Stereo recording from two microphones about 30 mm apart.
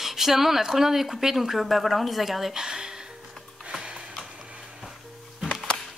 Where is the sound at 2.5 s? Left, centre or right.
Right.